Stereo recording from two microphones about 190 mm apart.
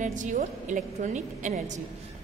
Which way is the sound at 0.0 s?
40° right (ahead or behind).